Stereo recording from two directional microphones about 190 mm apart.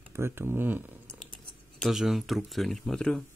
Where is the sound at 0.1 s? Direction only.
10° right (ahead or behind).